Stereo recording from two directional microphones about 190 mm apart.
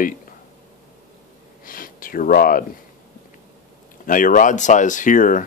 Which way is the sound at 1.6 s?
45° left (ahead or behind).